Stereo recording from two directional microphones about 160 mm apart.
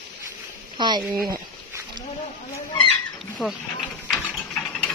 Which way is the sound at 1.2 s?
20° right (ahead or behind).